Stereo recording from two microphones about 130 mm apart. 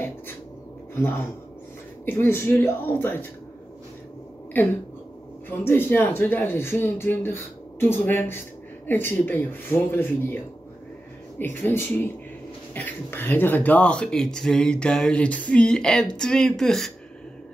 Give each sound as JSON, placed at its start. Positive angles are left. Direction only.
{"t": 0.9, "sound": "speech", "side_deg": 15}
{"t": 5.5, "sound": "speech", "side_deg": 15}